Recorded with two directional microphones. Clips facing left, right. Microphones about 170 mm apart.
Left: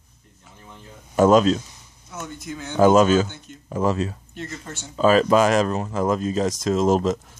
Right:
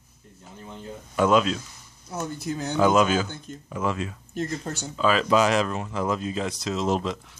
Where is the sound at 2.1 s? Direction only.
35° right (ahead or behind).